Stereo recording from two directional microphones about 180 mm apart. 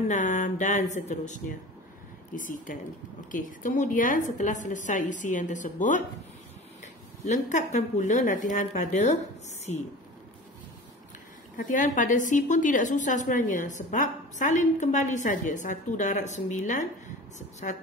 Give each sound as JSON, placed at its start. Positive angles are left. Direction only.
{"t": 0.1, "sound": "a woman's voice", "side_deg": 45}
{"t": 11.5, "sound": "a woman's voice", "side_deg": 45}